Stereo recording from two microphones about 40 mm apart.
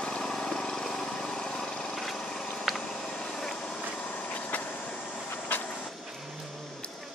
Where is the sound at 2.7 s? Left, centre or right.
Centre.